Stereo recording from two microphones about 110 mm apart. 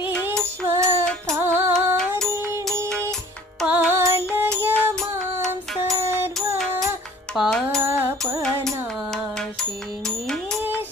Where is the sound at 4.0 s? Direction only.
25° right (ahead or behind).